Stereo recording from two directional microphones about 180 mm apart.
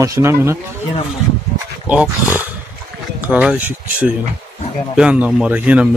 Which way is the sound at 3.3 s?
10° right (ahead or behind).